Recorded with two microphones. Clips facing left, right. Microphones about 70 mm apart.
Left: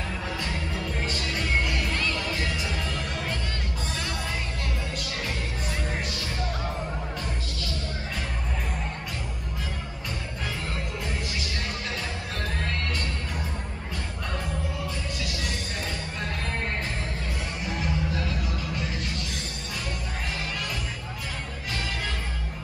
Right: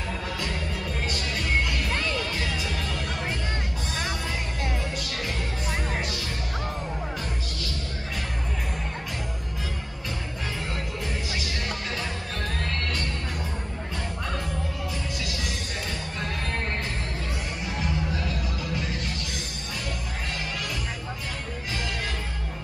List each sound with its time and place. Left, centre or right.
1.9 s music: right
17.7 s music: centre